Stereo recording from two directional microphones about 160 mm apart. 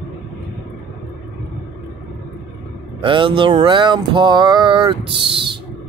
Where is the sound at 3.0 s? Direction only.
35° right (ahead or behind).